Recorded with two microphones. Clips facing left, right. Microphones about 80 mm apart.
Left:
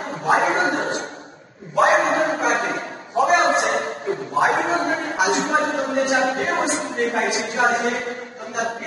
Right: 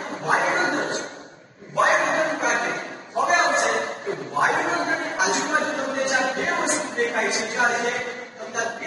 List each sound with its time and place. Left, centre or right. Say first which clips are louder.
0.2 s bow-wow: left 3 dB; left
3.3 s a sound: left 3 dB; left
3.6 s bow-wow: left 2 dB; left
5.2 s a man's voice: left 4 dB; left